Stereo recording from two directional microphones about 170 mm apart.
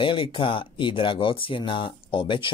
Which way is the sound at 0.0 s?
30° left (ahead or behind).